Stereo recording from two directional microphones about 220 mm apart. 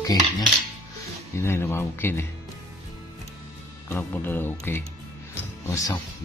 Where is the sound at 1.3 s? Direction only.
10° left (ahead or behind).